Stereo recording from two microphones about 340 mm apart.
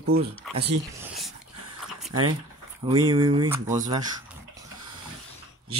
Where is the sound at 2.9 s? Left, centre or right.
Centre.